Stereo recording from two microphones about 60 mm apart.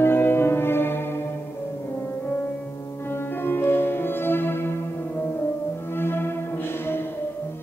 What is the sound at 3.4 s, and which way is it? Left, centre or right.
Music, left.